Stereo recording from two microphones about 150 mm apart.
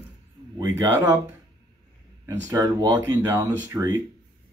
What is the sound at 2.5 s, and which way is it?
Speech, 25° right (ahead or behind).